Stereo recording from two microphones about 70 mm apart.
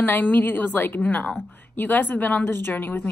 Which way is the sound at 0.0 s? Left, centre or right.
Left.